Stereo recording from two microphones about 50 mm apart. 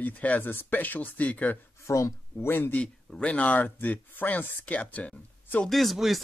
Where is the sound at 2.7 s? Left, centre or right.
Left.